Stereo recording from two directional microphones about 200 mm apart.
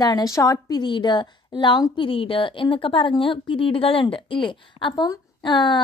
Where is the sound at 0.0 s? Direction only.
20° left (ahead or behind).